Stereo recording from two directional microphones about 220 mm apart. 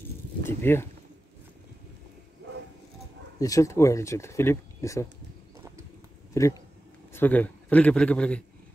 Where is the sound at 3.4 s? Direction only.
15° left (ahead or behind).